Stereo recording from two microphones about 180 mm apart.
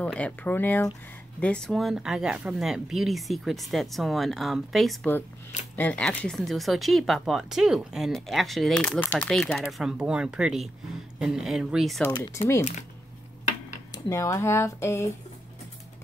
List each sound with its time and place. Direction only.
0.0 s speech: 5° left (ahead or behind)
12.1 s speech: 15° left (ahead or behind)
13.9 s speech: 15° left (ahead or behind)